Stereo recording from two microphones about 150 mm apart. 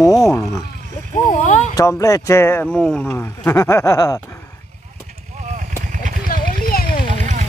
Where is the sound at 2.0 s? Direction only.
20° left (ahead or behind).